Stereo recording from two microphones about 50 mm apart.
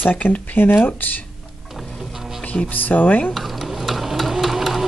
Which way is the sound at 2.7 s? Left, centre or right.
Left.